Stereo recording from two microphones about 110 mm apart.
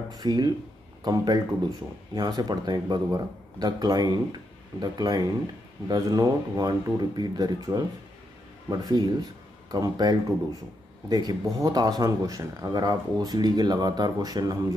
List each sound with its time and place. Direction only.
0.1 s speech: 40° right (ahead or behind)